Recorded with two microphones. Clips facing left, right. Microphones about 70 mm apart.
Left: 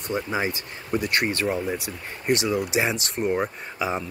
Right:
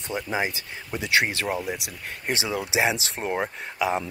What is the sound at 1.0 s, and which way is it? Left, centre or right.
Speech, right.